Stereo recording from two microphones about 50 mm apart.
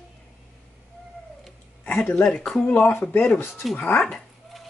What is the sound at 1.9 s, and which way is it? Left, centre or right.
Speech, left.